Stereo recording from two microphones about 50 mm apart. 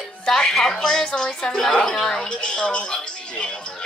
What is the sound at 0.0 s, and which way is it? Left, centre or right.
Speech, centre.